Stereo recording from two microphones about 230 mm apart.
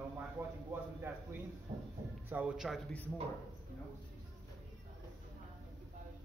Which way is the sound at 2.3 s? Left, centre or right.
Centre.